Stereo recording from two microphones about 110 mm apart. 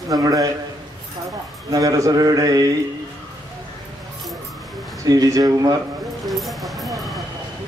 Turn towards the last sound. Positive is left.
turn(degrees=0)  # may be behind; listen again after turning